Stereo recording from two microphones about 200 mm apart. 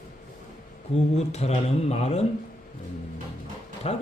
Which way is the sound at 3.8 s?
30° left (ahead or behind).